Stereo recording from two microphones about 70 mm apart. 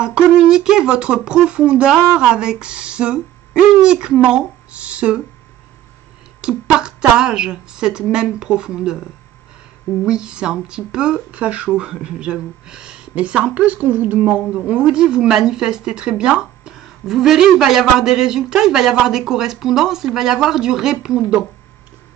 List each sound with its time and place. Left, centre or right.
0.0 s speech: centre
6.4 s speech: centre
10.0 s speech: centre